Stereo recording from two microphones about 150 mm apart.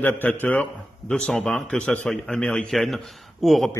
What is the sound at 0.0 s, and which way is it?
A man's voice, 10° left (ahead or behind).